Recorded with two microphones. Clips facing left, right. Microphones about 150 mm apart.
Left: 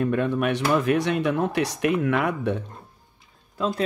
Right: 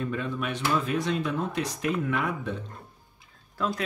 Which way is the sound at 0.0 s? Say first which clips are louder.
Left 8 dB; 60° left (ahead or behind).